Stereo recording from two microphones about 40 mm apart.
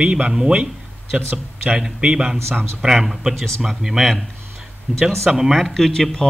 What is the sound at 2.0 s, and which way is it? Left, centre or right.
Speech, right.